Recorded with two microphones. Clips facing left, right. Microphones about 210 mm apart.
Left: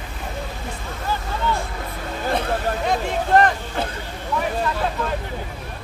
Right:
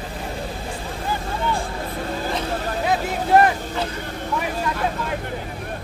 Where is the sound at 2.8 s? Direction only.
10° right (ahead or behind).